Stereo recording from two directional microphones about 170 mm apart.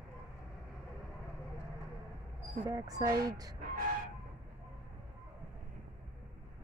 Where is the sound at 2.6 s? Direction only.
20° right (ahead or behind).